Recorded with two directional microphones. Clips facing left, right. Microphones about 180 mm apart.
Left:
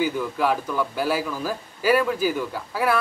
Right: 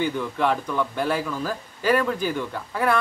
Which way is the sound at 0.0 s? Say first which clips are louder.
Left 1 dB; 5° left (ahead or behind).